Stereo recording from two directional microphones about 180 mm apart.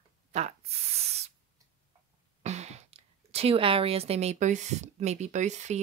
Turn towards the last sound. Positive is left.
turn(degrees=-40)  # may be behind; listen again after turning